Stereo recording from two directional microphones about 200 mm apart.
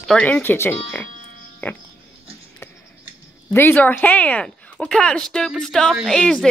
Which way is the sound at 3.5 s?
10° left (ahead or behind).